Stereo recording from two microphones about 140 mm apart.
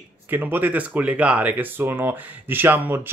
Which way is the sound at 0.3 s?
15° right (ahead or behind).